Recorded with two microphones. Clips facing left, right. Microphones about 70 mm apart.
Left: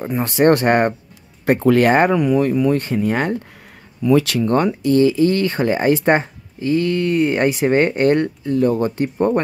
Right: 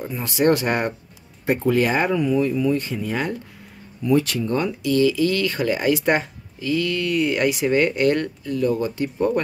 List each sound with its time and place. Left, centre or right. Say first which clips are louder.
0.0 s speech: left 5 dB; left
1.4 s speech: left 5 dB; left
4.0 s speech: left 4 dB; left
4.8 s speech: left 3 dB; left